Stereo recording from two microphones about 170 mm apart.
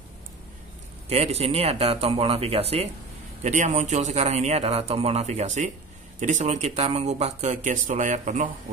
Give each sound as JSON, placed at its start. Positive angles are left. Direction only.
{"t": 1.0, "sound": "speech", "side_deg": -40}